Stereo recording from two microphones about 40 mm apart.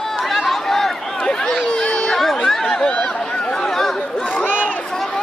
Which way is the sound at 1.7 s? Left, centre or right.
Left.